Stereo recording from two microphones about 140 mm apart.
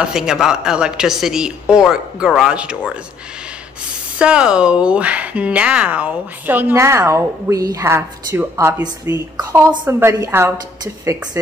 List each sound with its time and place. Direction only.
0.0 s a woman's voice: 5° right (ahead or behind)
4.2 s a woman's voice: 5° right (ahead or behind)